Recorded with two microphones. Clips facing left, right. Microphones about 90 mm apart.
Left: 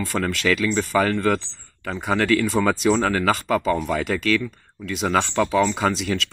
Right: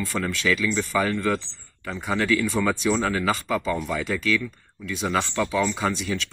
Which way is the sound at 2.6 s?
40° left (ahead or behind).